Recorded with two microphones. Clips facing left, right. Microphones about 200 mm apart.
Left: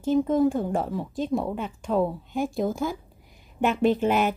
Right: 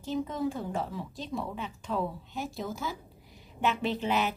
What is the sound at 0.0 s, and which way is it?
Speech, 50° left (ahead or behind).